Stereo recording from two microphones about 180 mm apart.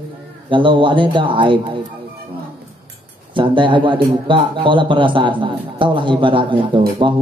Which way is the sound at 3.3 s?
25° right (ahead or behind).